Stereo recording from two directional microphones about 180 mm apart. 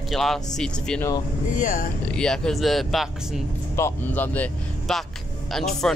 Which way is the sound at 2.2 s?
5° left (ahead or behind).